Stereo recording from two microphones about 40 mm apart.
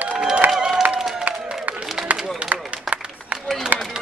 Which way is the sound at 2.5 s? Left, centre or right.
Right.